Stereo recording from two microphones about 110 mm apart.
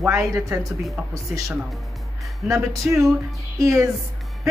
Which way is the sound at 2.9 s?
10° right (ahead or behind).